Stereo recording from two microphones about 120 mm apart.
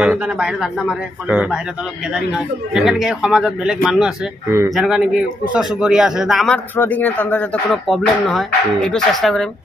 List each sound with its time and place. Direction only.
0.0 s a man's voice: 10° right (ahead or behind)
4.5 s speech: 25° right (ahead or behind)
4.7 s speech: 5° right (ahead or behind)
6.8 s speech: 15° left (ahead or behind)
7.6 s speech: centre (ahead or behind)